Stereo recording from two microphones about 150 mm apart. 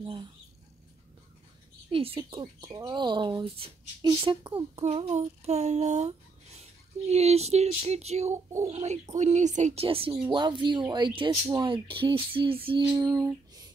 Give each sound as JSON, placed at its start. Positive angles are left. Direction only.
{"t": 1.9, "sound": "speech", "side_deg": -40}
{"t": 9.8, "sound": "speech", "side_deg": -35}
{"t": 12.6, "sound": "female singing", "side_deg": -30}